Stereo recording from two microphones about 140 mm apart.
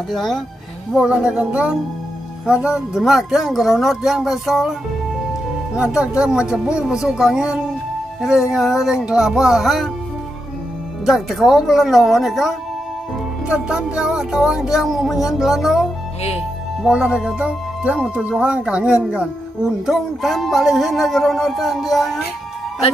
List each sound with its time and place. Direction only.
0.1 s music: centre (ahead or behind)
0.9 s speech: 5° right (ahead or behind)
2.4 s music: 5° right (ahead or behind)
5.8 s music: 5° right (ahead or behind)
11.1 s music: centre (ahead or behind)
16.2 s speech: 50° left (ahead or behind)
16.8 s speech: 5° right (ahead or behind)
19.9 s music: centre (ahead or behind)